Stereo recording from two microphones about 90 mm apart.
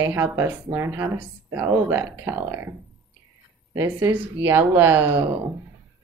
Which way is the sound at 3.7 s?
35° right (ahead or behind).